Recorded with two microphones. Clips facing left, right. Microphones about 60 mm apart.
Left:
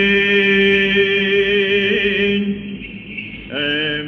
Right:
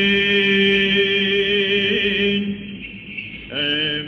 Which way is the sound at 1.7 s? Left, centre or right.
Centre.